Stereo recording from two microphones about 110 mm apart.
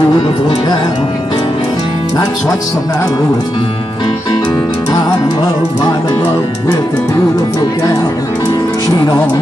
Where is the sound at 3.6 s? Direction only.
40° left (ahead or behind).